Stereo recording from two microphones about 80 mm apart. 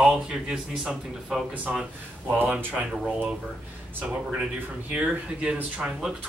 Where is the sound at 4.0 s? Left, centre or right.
Centre.